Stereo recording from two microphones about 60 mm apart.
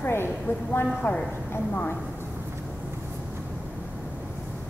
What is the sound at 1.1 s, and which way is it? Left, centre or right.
Speech, left.